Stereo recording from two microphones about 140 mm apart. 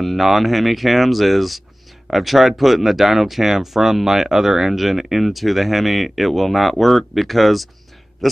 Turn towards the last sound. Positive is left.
turn(degrees=0)  # may be behind; listen again after turning